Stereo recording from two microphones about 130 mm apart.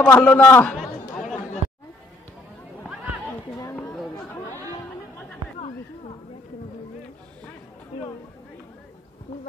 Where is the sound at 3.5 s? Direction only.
20° left (ahead or behind).